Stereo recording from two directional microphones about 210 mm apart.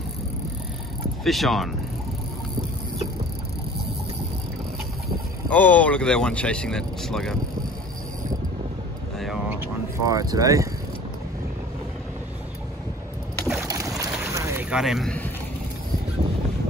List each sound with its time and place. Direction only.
1.2 s speech: centre (ahead or behind)
5.5 s speech: 5° left (ahead or behind)
9.6 s speech: 15° right (ahead or behind)
13.9 s boat: 15° right (ahead or behind); by 15.2 s centre (ahead or behind)